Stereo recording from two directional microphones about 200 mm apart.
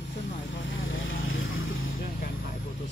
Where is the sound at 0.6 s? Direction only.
65° left (ahead or behind).